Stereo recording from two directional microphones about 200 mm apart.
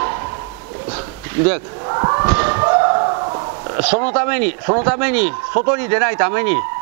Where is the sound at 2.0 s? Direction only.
25° right (ahead or behind).